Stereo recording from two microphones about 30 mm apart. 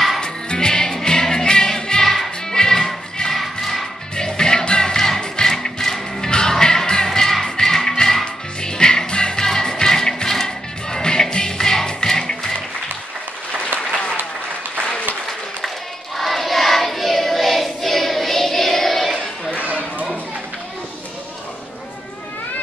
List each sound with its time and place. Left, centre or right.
0.2 s music: left
2.0 s music: centre
2.5 s music: centre
4.1 s music: left
4.9 s music: centre
5.2 s music: left
5.5 s music: centre
7.1 s music: centre
16.2 s choir: centre
19.5 s a sound: right